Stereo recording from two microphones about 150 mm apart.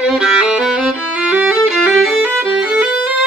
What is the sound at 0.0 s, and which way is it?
Violin, 5° right (ahead or behind).